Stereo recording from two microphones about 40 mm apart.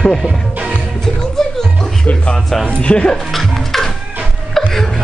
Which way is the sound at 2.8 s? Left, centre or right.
Left.